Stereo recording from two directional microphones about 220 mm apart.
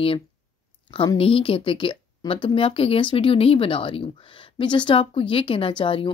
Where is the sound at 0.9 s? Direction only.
25° left (ahead or behind).